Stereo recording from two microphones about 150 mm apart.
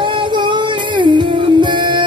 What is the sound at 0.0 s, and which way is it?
Music, 30° right (ahead or behind).